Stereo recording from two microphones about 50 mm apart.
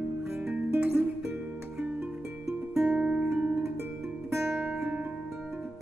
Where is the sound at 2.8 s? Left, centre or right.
Right.